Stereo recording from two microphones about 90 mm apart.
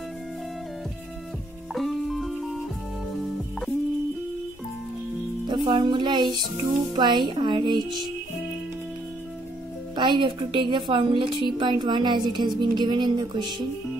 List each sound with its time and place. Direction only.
1.7 s music: centre (ahead or behind)
5.5 s speech: 55° right (ahead or behind)
9.9 s speech: 65° right (ahead or behind)